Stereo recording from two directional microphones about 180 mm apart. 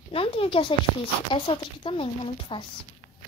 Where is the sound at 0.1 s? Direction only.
30° left (ahead or behind).